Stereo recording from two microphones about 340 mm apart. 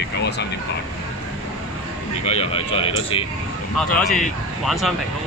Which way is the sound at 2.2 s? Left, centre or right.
Centre.